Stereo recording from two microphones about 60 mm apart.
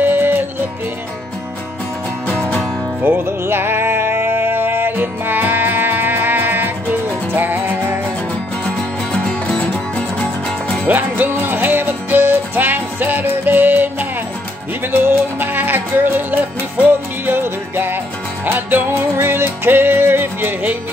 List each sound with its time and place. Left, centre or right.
0.0 s music: right
3.0 s music: right
9.1 s music: centre
10.9 s music: right